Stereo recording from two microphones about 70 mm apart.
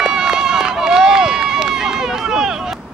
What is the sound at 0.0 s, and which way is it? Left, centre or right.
Run, centre.